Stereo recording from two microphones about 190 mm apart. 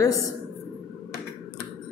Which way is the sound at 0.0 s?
15° left (ahead or behind).